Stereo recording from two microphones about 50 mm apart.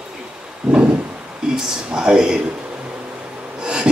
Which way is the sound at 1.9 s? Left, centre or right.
Centre.